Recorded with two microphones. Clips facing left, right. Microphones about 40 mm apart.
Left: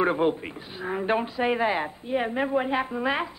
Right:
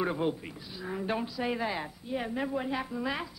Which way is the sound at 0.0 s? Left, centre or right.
Left.